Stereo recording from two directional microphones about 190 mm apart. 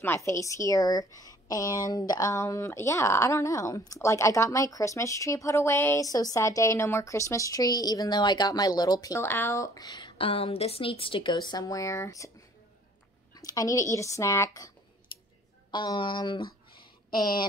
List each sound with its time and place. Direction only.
0.0 s speech: 15° left (ahead or behind)
15.7 s speech: 25° left (ahead or behind)